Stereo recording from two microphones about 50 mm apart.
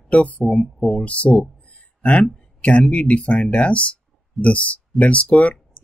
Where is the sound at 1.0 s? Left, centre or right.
Left.